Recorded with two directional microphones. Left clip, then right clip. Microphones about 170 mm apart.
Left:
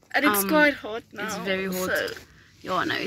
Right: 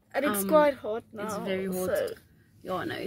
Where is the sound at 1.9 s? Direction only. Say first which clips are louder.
Left 2 dB; 20° right (ahead or behind).